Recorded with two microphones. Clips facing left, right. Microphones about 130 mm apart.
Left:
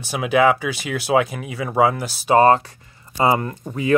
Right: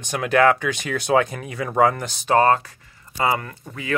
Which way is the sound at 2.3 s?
25° left (ahead or behind).